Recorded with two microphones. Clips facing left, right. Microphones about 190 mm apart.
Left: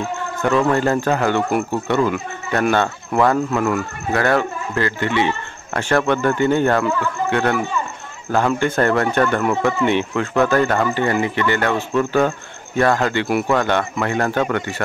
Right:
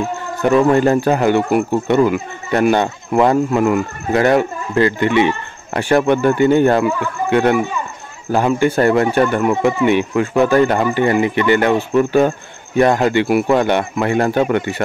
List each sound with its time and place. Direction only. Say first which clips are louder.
0.4 s speech: right 5 dB; 15° right (ahead or behind)